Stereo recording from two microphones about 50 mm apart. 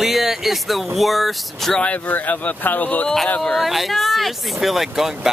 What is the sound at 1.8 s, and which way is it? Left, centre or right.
Speech, left.